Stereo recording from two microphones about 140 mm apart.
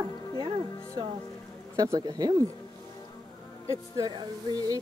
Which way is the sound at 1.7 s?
25° right (ahead or behind).